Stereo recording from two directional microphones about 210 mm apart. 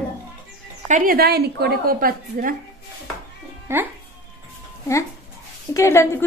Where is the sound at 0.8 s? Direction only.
40° right (ahead or behind).